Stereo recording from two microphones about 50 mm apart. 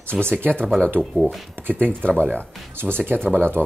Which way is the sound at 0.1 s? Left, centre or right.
Right.